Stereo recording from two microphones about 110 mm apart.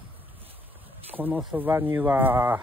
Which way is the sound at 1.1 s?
15° right (ahead or behind).